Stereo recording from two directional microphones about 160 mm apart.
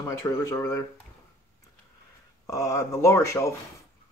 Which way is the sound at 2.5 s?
20° left (ahead or behind).